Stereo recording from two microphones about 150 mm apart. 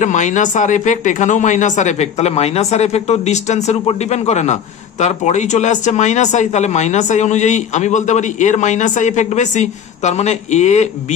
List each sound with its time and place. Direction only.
0.0 s speech: 55° left (ahead or behind)